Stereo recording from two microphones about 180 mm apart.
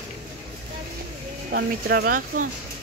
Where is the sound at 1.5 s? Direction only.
60° right (ahead or behind).